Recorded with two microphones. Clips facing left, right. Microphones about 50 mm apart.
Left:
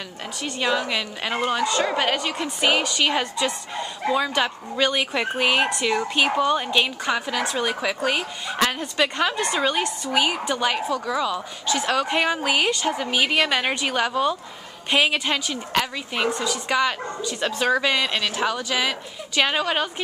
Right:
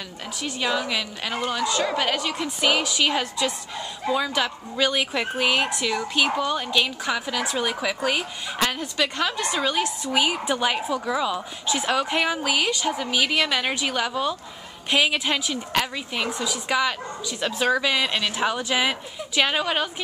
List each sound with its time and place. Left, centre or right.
0.4 s a woman's voice: centre
7.1 s a woman's voice: centre
19.3 s a woman's voice: centre